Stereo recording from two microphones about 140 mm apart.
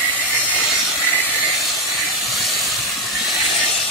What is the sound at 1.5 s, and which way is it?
Steam, centre (ahead or behind).